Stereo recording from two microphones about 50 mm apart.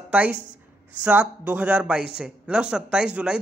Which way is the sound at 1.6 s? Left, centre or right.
Right.